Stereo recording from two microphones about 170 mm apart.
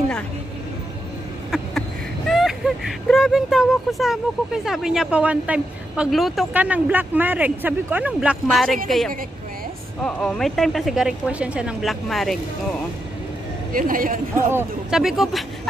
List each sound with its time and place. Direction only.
1.5 s a woman's voice: 5° left (ahead or behind)
13.7 s a woman's voice: 55° right (ahead or behind)
14.9 s a woman's voice: centre (ahead or behind)